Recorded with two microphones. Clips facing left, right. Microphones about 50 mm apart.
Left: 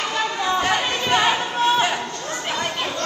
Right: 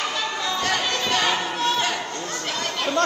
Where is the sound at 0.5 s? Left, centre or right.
Left.